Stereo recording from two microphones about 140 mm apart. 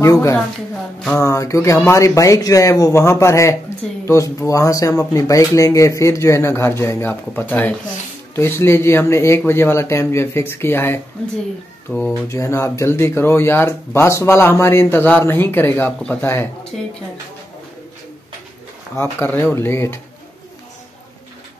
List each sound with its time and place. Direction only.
0.0 s speech: 20° left (ahead or behind)
11.9 s speech: 5° left (ahead or behind)
12.3 s speech: 20° left (ahead or behind)
18.9 s speech: 15° left (ahead or behind)